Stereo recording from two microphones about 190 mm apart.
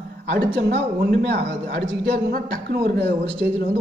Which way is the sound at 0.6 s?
60° right (ahead or behind).